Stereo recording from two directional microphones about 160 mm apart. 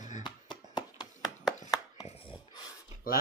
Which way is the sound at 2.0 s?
35° left (ahead or behind).